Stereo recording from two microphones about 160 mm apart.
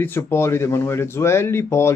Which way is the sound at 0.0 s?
15° left (ahead or behind).